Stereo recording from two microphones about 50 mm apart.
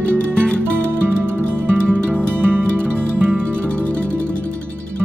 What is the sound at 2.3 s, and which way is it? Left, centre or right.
Music, right.